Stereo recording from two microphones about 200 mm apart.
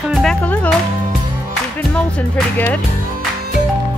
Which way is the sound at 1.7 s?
5° left (ahead or behind).